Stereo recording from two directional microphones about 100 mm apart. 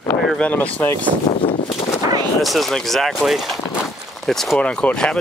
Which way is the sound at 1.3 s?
90° left.